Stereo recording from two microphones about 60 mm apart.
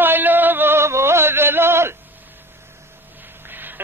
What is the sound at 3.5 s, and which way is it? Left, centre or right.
Duck, right.